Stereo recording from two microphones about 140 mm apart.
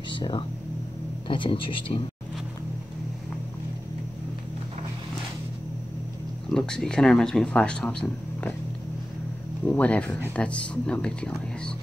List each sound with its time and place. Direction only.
0.1 s speech: 35° left (ahead or behind)
6.5 s speech: 5° left (ahead or behind)
9.7 s speech: 10° left (ahead or behind)